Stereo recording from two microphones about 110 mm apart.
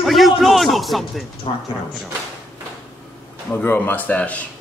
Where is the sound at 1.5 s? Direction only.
50° left (ahead or behind).